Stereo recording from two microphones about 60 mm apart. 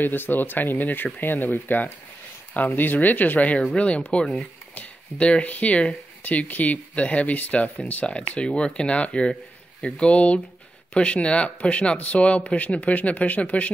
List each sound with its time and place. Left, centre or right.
0.0 s speech: left